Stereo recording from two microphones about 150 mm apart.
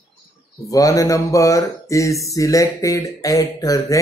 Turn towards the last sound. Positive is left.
turn(degrees=25)  # may be behind; listen again after turning